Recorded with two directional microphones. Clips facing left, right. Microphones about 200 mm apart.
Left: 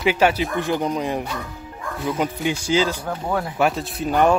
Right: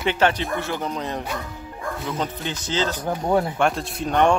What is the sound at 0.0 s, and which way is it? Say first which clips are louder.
Speech: left 2 dB; 10° left (ahead or behind).